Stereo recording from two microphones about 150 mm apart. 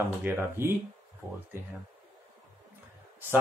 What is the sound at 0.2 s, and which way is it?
Speech, 15° right (ahead or behind).